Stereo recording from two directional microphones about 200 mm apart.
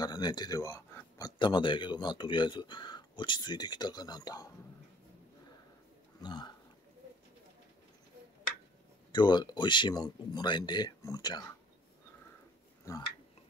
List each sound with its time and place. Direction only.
0.0 s speech: 20° left (ahead or behind)
6.2 s speech: 20° left (ahead or behind)
9.1 s speech: 20° left (ahead or behind)